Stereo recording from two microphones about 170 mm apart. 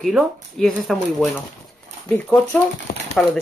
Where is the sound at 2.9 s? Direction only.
55° left (ahead or behind).